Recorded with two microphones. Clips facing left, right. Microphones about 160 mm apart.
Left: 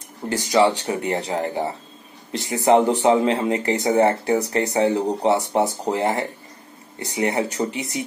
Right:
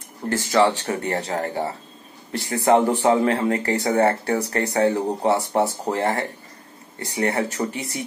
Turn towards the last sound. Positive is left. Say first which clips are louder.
# left 2 dB
turn(degrees=20)  # may be behind; listen again after turning